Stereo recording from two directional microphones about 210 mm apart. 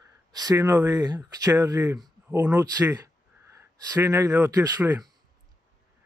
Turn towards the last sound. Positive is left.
turn(degrees=-15)  # may be behind; listen again after turning